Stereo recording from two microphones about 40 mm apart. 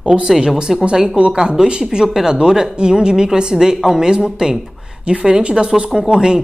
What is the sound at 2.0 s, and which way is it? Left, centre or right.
Speech, centre.